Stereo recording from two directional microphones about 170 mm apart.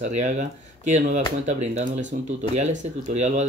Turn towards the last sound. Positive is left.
turn(degrees=-45)  # may be behind; listen again after turning